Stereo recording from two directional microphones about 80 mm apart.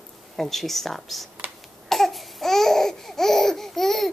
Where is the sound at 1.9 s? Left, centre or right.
Centre.